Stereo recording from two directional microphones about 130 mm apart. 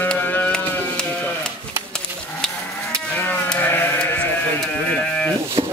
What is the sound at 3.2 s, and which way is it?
Sheep, 15° left (ahead or behind).